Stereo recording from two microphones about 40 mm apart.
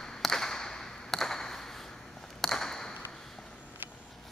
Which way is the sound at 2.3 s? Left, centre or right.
Centre.